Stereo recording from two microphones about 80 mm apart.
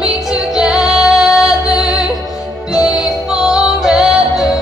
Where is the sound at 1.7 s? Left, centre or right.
Left.